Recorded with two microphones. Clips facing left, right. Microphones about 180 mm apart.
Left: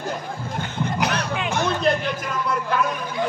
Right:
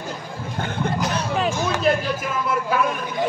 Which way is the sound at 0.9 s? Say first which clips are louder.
Left 4 dB; 65° left (ahead or behind).